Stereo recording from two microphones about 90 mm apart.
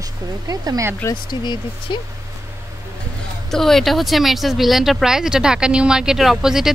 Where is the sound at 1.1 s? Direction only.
55° left (ahead or behind).